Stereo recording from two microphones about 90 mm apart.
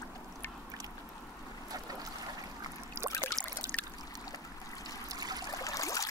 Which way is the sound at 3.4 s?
15° left (ahead or behind).